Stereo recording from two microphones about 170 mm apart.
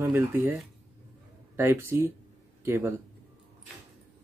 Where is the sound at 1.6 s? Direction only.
15° right (ahead or behind).